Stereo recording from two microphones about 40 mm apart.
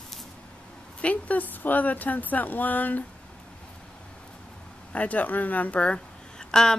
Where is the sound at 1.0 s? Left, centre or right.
Left.